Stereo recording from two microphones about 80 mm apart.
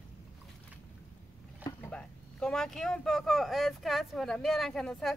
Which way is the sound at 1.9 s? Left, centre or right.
Centre.